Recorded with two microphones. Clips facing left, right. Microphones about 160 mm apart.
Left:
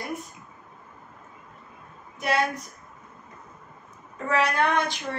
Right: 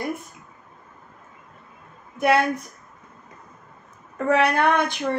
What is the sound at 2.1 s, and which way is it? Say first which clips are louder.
Speech: right 6 dB; 55° right (ahead or behind).